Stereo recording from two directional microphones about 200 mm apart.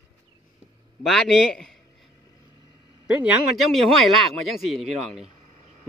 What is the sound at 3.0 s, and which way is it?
Speech, centre (ahead or behind).